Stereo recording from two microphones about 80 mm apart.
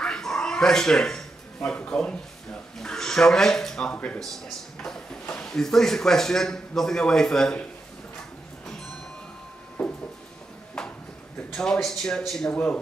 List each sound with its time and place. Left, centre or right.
0.0 s dog: centre
1.7 s speech: centre
4.2 s speech: centre
9.8 s a sound: centre
11.5 s speech: centre